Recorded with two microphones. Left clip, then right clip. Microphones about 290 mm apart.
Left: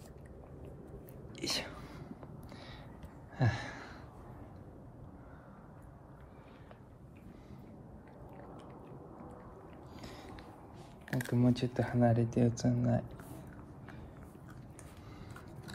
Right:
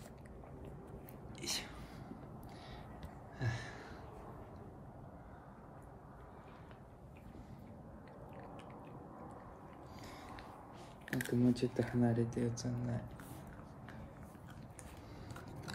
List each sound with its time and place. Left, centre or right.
1.3 s whispering: centre
3.3 s a sound: centre
11.1 s speech: centre
12.0 s speech: left
12.3 s speech: centre